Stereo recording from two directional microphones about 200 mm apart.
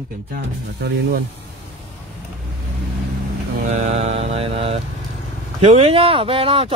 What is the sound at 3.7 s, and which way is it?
Mantra, 35° right (ahead or behind).